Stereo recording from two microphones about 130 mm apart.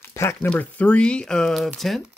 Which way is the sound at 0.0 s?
20° left (ahead or behind).